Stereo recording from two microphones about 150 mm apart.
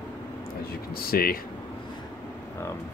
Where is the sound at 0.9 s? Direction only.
90° left.